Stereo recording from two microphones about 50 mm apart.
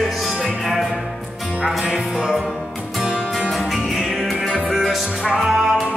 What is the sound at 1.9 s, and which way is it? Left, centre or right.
Music, centre.